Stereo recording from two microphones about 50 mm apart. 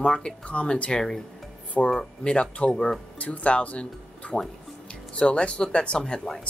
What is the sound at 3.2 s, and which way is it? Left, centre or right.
Speech, left.